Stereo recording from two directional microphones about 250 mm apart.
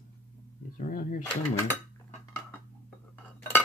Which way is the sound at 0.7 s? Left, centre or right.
Left.